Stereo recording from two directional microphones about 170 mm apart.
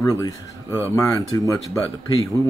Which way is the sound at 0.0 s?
15° left (ahead or behind).